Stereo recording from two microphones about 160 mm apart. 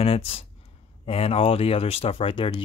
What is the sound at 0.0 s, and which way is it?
Speech, 35° left (ahead or behind).